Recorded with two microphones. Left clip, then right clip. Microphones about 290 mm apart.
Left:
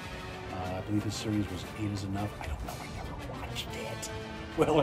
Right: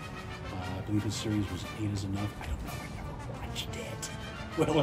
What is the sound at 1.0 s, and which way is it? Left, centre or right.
Speech, centre.